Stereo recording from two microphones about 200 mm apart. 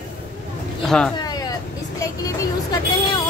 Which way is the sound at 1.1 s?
20° left (ahead or behind).